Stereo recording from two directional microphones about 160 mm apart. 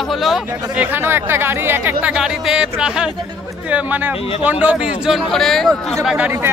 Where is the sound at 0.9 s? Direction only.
15° right (ahead or behind).